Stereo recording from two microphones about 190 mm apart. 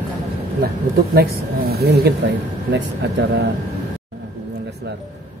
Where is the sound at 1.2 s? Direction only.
55° right (ahead or behind).